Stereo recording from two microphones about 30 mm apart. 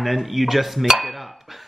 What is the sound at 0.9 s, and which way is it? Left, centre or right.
Dishes, centre.